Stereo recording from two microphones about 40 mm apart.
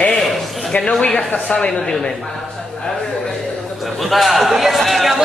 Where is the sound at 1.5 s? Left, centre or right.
Left.